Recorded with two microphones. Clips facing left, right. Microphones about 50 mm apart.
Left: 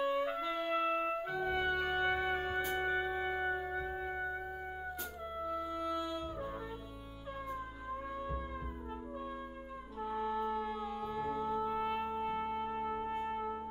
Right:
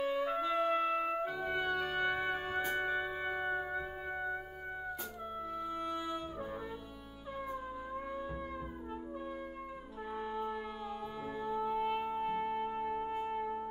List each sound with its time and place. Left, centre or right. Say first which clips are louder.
0.1 s music: right 2 dB; centre
5.4 s music: left 2 dB; centre
5.9 s music: left 1 dB; centre
10.1 s music: left 3 dB; centre